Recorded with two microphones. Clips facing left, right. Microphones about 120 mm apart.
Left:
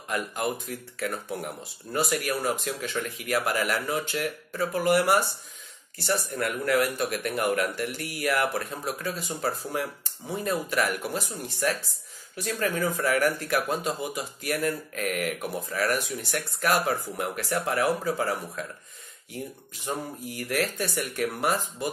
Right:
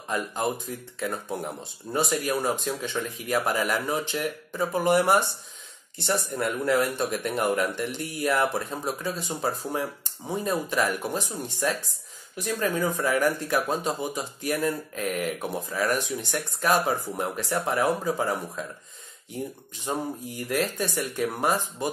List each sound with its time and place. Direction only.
0.1 s speech: 20° right (ahead or behind)
6.3 s speech: 20° right (ahead or behind)
19.9 s speech: 20° right (ahead or behind)